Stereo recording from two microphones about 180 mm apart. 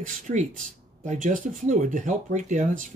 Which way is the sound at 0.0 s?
45° right (ahead or behind).